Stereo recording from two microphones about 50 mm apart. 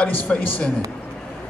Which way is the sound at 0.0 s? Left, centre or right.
Left.